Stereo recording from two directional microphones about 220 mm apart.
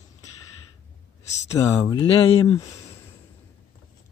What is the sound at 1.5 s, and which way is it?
Speech, 20° left (ahead or behind).